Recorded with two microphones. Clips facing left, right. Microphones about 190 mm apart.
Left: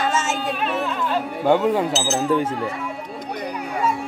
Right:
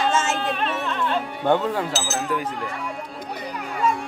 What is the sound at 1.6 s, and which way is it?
Speech, 15° left (ahead or behind).